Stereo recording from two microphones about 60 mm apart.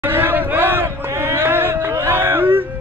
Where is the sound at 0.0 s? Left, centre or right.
Right.